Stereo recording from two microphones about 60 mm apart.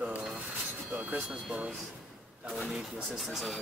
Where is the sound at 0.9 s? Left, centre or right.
Right.